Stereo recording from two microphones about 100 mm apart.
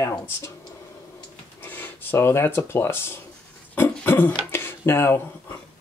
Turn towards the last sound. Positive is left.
turn(degrees=25)  # may be behind; listen again after turning